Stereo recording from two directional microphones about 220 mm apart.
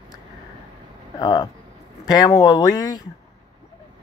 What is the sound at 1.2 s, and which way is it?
Speech, 20° left (ahead or behind).